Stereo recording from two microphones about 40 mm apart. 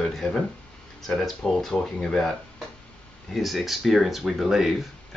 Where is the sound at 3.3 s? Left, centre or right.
Centre.